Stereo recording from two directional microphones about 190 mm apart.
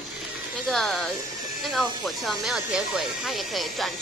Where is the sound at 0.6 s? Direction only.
Centre (ahead or behind).